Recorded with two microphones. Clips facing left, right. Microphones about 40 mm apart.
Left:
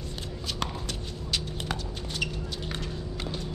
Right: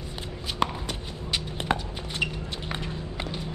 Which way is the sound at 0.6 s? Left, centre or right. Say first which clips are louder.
Right 8 dB; centre.